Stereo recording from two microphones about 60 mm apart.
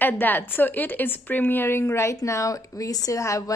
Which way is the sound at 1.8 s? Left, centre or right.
Left.